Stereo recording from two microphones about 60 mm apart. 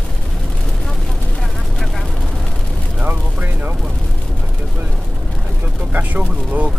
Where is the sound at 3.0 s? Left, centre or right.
Right.